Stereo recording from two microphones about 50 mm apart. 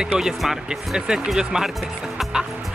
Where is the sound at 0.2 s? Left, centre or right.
Centre.